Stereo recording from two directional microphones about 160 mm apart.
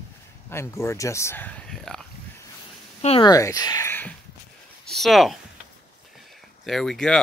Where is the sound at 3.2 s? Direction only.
20° left (ahead or behind).